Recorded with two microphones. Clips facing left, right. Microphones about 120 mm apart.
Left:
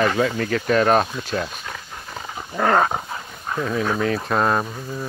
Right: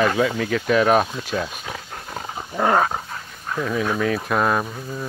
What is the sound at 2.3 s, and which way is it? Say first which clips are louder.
Dog: even; 15° right (ahead or behind).